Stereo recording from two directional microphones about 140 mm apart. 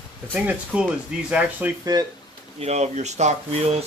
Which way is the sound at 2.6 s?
50° right (ahead or behind).